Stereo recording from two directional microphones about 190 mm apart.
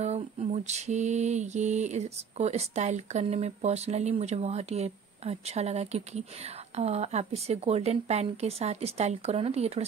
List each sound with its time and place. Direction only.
0.0 s mantra: 35° right (ahead or behind)